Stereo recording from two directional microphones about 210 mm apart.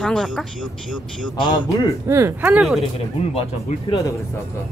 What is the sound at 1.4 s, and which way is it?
Speech, 20° left (ahead or behind).